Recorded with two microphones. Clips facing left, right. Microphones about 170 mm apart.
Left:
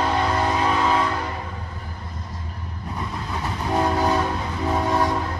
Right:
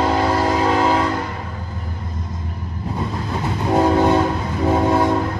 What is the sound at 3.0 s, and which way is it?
Train, 25° right (ahead or behind).